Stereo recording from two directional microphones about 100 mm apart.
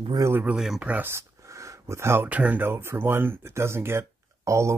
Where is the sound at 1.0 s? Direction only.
30° right (ahead or behind).